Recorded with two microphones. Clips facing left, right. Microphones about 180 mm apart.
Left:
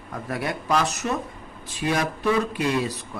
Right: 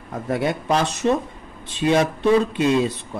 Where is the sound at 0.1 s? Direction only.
25° right (ahead or behind).